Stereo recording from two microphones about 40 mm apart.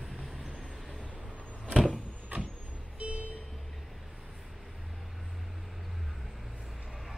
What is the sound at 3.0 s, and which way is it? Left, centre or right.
Vehicle, right.